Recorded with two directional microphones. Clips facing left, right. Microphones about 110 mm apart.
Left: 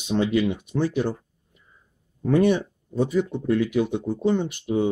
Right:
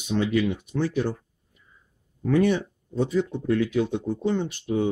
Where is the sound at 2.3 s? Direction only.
20° left (ahead or behind).